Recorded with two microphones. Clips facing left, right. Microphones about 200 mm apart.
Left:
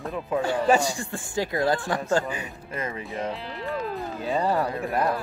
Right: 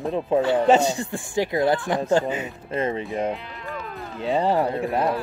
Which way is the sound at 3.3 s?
35° left (ahead or behind).